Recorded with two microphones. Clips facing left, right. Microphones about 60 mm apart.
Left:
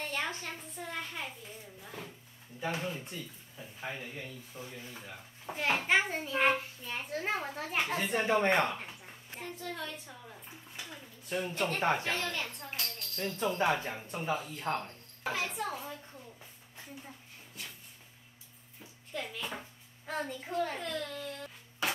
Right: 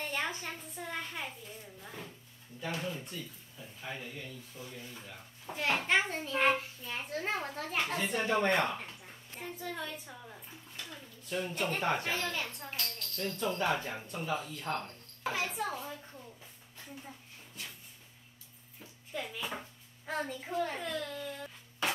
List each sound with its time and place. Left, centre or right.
0.0 s a sound: centre
0.7 s a child's voice: centre
2.6 s speech: left
5.6 s a child's voice: centre
8.5 s a child's voice: centre
8.8 s a sound: centre
9.4 s a child's voice: centre
10.8 s a sound: centre
11.3 s a child's voice: centre
13.0 s speech: centre
14.8 s a woman's voice: centre
18.8 s a child's voice: centre